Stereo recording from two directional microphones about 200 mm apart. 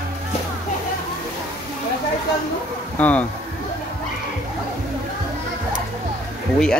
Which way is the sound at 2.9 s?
10° left (ahead or behind).